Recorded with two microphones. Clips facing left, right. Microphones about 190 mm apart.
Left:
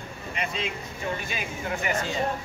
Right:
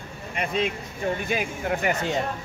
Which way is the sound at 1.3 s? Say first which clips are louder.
Right 6 dB; 50° right (ahead or behind).